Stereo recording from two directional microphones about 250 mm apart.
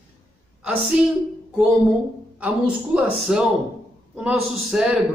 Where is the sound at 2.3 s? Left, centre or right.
Centre.